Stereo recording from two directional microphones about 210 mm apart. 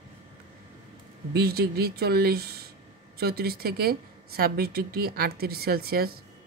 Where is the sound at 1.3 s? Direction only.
45° right (ahead or behind).